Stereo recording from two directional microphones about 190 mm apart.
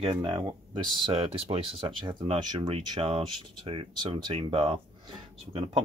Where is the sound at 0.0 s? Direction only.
25° right (ahead or behind).